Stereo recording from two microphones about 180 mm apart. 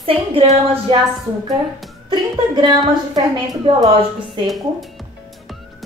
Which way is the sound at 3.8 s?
Centre (ahead or behind).